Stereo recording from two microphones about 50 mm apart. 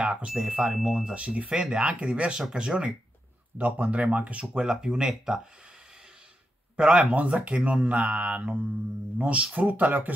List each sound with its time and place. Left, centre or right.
0.0 s speech: right
0.6 s speech: centre
1.1 s speech: right
3.5 s speech: right
4.6 s speech: centre
6.8 s speech: centre
7.2 s speech: right